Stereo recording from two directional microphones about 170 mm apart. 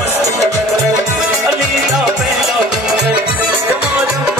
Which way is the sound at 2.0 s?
5° right (ahead or behind).